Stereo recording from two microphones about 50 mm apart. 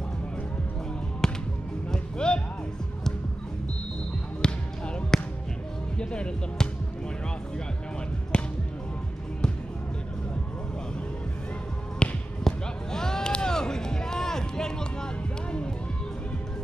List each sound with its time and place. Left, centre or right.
1.2 s music: centre
4.4 s basketball bounce: centre
5.9 s music: centre
8.3 s music: left
12.0 s basketball bounce: centre